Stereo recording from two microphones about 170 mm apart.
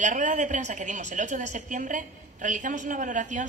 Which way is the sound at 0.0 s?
50° right (ahead or behind).